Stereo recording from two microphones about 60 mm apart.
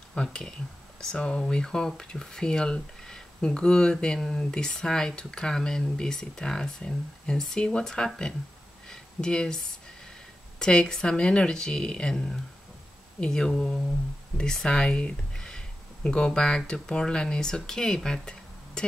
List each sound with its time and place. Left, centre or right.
0.1 s speech: centre